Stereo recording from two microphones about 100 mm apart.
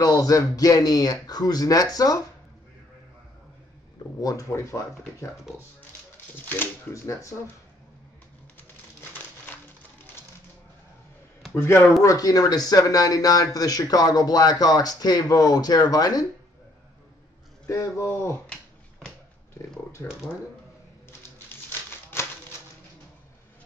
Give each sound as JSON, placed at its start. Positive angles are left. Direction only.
{"t": 0.0, "sound": "speech", "side_deg": 35}
{"t": 4.2, "sound": "speech", "side_deg": 35}
{"t": 6.3, "sound": "speech", "side_deg": 20}
{"t": 6.9, "sound": "speech", "side_deg": 30}
{"t": 11.5, "sound": "speech", "side_deg": 25}
{"t": 17.6, "sound": "speech", "side_deg": 30}
{"t": 21.5, "sound": "crumpling", "side_deg": 25}